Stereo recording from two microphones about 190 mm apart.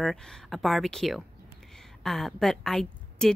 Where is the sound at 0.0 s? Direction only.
Centre (ahead or behind).